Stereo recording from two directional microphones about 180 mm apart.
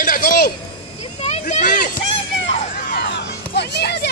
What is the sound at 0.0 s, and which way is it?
Speech, 50° left (ahead or behind).